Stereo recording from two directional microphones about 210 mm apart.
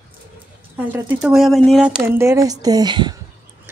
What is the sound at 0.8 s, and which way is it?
Speech, 10° right (ahead or behind).